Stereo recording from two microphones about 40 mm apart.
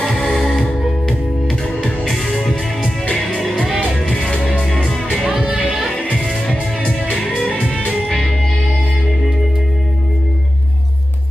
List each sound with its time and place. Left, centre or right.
0.0 s music: centre
2.4 s music: left
3.6 s music: centre
4.5 s music: left
5.2 s music: centre
7.4 s music: left